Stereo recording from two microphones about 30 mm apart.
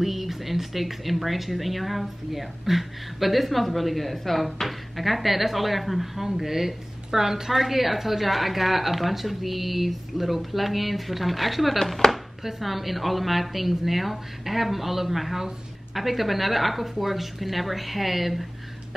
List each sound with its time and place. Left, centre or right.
0.0 s speech: centre
12.0 s chopping: centre
12.4 s speech: centre